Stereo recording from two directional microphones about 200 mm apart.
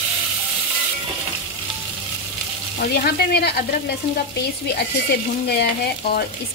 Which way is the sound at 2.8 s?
50° left (ahead or behind).